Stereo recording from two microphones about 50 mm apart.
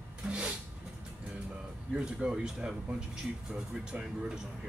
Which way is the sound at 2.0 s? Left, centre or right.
Centre.